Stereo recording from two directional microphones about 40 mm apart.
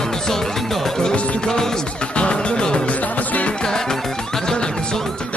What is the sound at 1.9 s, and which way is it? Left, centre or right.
Music, left.